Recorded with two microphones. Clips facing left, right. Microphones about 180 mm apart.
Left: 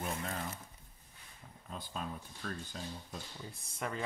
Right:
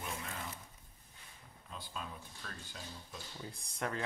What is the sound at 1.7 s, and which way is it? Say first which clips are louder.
Speech: left 4 dB; 45° left (ahead or behind).